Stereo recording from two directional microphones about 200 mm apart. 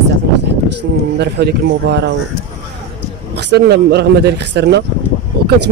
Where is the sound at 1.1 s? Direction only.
55° right (ahead or behind).